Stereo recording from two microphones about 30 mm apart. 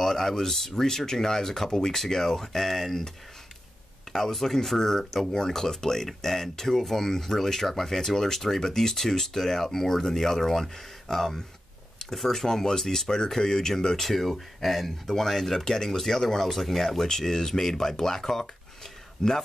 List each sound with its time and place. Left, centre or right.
0.0 s speech: centre
4.1 s speech: centre
14.0 s speech: centre
15.6 s speech: centre